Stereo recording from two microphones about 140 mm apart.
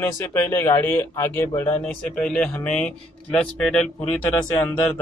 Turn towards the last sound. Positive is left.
turn(degrees=10)  # may be behind; listen again after turning